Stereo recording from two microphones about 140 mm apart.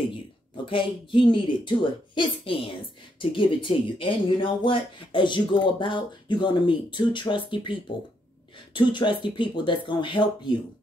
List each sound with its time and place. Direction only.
0.7 s speech: 40° left (ahead or behind)
8.7 s speech: 35° left (ahead or behind)